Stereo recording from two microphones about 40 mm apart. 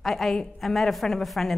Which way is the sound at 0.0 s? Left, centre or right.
Centre.